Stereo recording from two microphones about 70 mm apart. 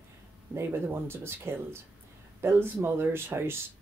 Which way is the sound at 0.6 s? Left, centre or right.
Right.